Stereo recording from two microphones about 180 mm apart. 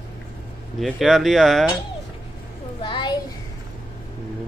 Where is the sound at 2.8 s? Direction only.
25° left (ahead or behind).